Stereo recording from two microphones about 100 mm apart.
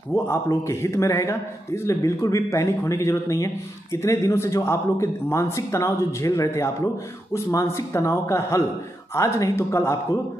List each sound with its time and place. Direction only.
0.1 s a man's voice: 30° left (ahead or behind)